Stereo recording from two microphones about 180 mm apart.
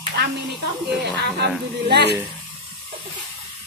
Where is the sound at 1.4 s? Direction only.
65° right (ahead or behind).